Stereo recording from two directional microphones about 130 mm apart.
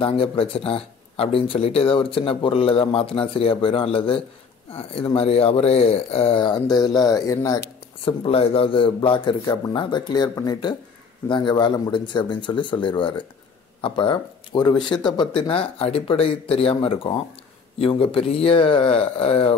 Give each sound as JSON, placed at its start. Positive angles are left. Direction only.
{"t": 0.0, "sound": "speech", "side_deg": 45}
{"t": 8.0, "sound": "speech", "side_deg": 45}